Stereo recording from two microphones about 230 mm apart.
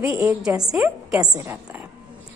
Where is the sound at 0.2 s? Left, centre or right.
Centre.